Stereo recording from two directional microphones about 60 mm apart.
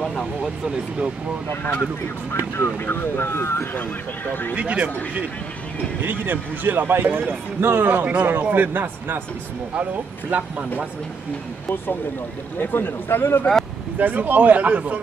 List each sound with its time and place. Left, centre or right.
0.0 s a sound: centre
0.7 s speech: centre
1.6 s speech: left
2.3 s speech: left
4.3 s a man's voice: left
4.6 s a man's voice: right
6.0 s a man's voice: right
8.0 s a man's voice: right
12.5 s a man's voice: left
13.9 s a man's voice: right